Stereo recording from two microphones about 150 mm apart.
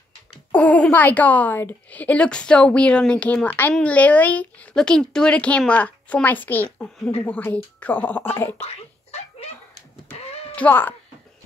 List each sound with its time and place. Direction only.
0.5 s speech: 10° left (ahead or behind)
8.5 s a sound: 40° left (ahead or behind)
10.1 s music: 40° left (ahead or behind)
10.5 s speech: 10° left (ahead or behind)